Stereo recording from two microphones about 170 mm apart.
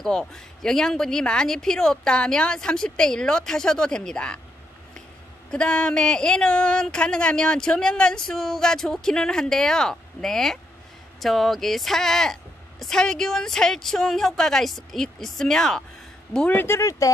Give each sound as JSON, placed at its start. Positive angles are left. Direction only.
{"t": 0.0, "sound": "speech", "side_deg": 0}
{"t": 5.5, "sound": "speech", "side_deg": 5}